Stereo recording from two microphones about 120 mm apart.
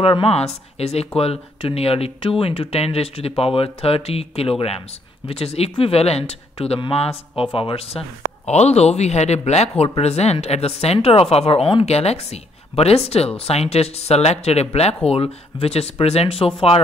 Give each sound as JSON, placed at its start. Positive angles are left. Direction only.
{"t": 0.0, "sound": "speech", "side_deg": 50}
{"t": 8.5, "sound": "speech", "side_deg": 65}